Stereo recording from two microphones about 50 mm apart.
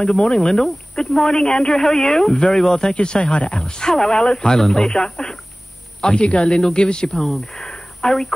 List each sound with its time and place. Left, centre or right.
0.3 s speech: centre
2.7 s speech: left
6.0 s speech: left
7.2 s speech: centre